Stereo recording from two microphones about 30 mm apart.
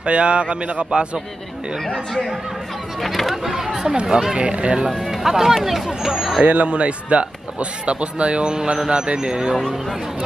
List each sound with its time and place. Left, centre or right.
0.0 s a man's voice: right
0.8 s speech: right
3.0 s speech: centre
3.4 s speech: centre
3.8 s a man's voice: right
4.7 s speech: right
5.0 s speech: centre
6.4 s speech: right
8.5 s a man's voice: right
9.6 s speech: centre